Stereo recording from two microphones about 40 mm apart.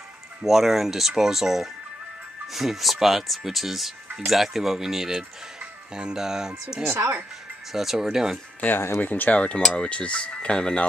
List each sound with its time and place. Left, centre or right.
0.4 s speech: centre
6.9 s speech: right
7.7 s speech: centre
8.5 s speech: left
9.3 s speech: left
9.6 s speech: centre
9.8 s speech: left